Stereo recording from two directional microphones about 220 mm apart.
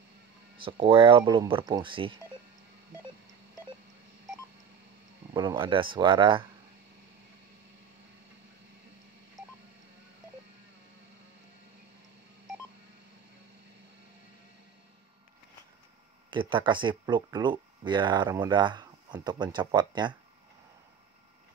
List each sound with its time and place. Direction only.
0.6 s speech: 25° right (ahead or behind)
5.3 s speech: 20° right (ahead or behind)
16.3 s speech: 20° right (ahead or behind)